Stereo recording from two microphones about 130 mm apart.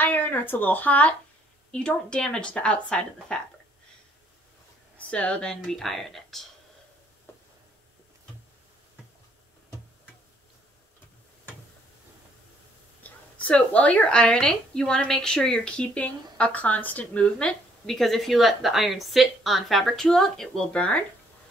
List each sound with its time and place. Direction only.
0.0 s a woman's voice: 15° left (ahead or behind)
4.9 s speech: 10° left (ahead or behind)
7.3 s a sound: 20° left (ahead or behind)
13.0 s a woman's voice: 10° left (ahead or behind)